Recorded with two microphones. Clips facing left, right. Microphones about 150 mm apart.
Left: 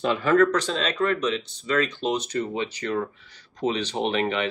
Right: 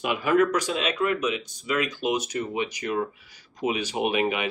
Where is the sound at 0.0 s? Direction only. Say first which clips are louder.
Left 2 dB; 15° right (ahead or behind).